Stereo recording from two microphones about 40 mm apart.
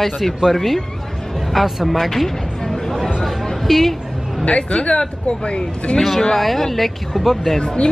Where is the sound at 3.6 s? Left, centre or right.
Centre.